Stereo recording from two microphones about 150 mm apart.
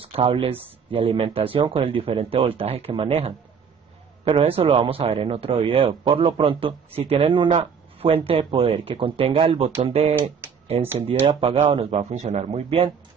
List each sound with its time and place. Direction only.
0.0 s speech: 40° right (ahead or behind)